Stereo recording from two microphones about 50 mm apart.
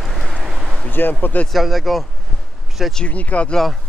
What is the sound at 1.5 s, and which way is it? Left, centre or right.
Speech, centre.